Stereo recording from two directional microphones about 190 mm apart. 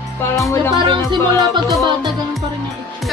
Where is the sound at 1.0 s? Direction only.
25° right (ahead or behind).